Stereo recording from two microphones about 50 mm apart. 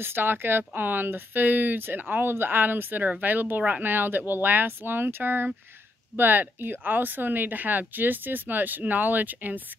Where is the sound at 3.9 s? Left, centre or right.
Right.